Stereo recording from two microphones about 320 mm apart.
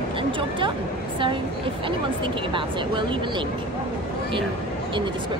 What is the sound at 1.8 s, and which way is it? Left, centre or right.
Speech, centre.